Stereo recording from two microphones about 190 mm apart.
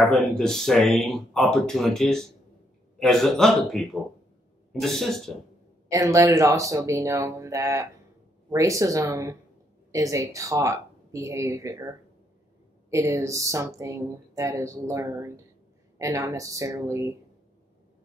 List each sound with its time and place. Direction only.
0.0 s speech: 5° left (ahead or behind)
5.9 s speech: 15° right (ahead or behind)
12.9 s speech: 15° right (ahead or behind)